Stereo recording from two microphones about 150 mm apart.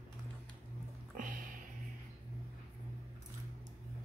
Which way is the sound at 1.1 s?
65° right (ahead or behind).